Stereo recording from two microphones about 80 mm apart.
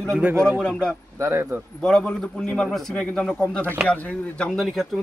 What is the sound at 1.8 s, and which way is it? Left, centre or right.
Speech, centre.